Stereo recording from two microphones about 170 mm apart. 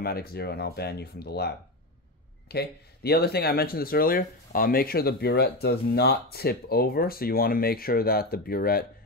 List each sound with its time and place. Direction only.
0.0 s speech: 65° left (ahead or behind)